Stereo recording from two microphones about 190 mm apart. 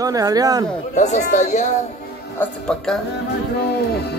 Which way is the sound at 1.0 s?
40° left (ahead or behind).